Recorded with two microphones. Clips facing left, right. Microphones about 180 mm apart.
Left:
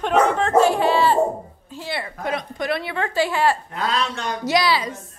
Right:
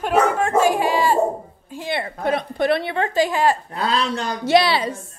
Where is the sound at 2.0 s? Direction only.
30° right (ahead or behind).